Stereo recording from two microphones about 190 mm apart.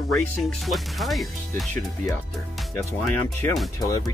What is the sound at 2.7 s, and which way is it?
Speech, 15° left (ahead or behind).